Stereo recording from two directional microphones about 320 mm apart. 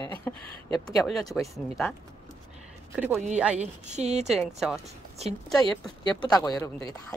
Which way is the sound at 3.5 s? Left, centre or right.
Right.